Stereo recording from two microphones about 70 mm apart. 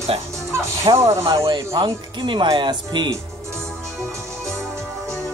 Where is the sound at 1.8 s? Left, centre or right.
Right.